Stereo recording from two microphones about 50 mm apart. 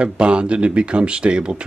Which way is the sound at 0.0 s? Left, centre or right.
Right.